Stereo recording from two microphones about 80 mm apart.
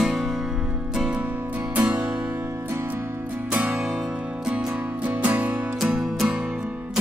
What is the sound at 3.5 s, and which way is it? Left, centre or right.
Music, centre.